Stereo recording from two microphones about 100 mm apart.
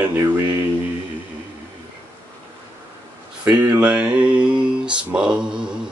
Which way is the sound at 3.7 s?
15° right (ahead or behind).